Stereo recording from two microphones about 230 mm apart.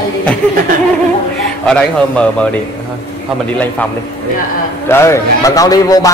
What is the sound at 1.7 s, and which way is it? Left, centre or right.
Speech, centre.